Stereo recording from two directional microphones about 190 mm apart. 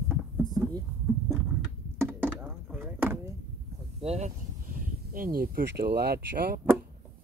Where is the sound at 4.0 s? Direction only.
35° right (ahead or behind); by 6.6 s 55° right (ahead or behind).